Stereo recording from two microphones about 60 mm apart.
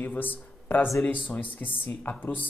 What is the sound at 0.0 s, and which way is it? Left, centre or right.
Speech, left.